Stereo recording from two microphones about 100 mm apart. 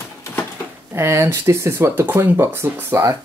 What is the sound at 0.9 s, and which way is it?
Speech, 25° right (ahead or behind).